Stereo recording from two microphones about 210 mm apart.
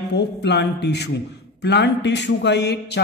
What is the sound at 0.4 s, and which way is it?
A man's voice, 55° left (ahead or behind).